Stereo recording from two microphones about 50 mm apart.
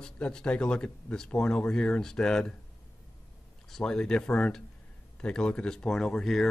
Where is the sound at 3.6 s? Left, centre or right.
Centre.